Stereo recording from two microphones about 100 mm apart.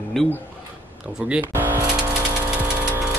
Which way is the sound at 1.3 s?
20° right (ahead or behind).